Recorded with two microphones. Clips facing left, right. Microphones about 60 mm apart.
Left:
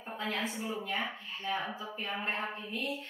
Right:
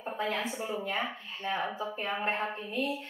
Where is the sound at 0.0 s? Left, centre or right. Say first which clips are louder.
Right 3 dB; right.